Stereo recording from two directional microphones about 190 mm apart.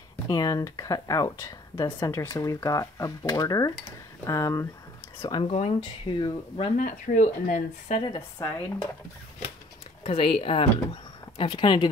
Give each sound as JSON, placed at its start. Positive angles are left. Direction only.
{"t": 0.3, "sound": "speech", "side_deg": 20}
{"t": 6.8, "sound": "speech", "side_deg": 45}
{"t": 8.0, "sound": "speech", "side_deg": 25}
{"t": 10.0, "sound": "speech", "side_deg": 30}